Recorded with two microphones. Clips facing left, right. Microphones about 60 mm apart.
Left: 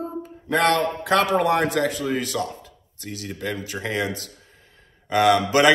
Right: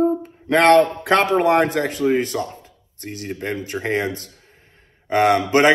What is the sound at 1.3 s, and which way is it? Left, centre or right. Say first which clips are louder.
A man's voice: right 4 dB; right.